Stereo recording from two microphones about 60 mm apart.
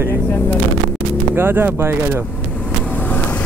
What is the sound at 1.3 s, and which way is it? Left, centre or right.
Speech, right.